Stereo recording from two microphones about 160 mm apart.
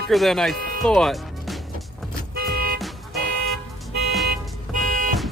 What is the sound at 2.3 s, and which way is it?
Vehicle, 70° right (ahead or behind).